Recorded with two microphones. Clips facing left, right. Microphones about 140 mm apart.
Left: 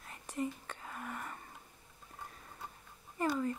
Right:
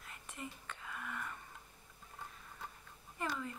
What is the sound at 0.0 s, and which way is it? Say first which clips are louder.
Whispering: left 10 dB; 35° left (ahead or behind).